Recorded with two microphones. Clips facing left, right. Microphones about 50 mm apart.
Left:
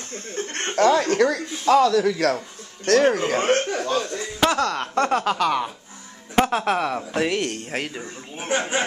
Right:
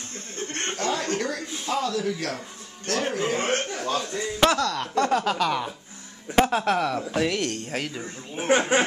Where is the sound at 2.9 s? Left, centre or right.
Left.